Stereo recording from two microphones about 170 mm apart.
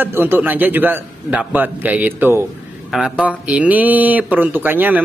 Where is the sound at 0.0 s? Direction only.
10° right (ahead or behind).